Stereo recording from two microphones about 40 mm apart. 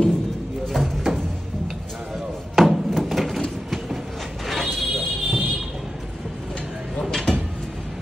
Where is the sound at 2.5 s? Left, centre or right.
Centre.